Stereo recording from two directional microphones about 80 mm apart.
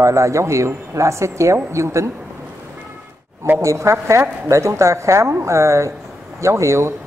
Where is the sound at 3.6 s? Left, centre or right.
Right.